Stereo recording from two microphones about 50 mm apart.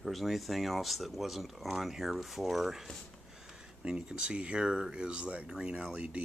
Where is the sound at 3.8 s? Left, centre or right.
Centre.